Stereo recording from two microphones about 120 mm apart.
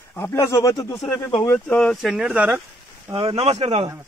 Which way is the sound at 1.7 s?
10° left (ahead or behind).